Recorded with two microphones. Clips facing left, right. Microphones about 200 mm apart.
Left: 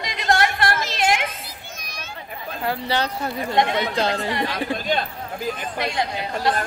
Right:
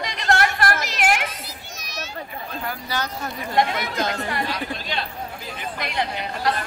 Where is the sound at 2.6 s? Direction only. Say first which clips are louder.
Left 7 dB; 30° left (ahead or behind).